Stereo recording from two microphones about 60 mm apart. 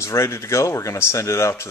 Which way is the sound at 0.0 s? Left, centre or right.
Left.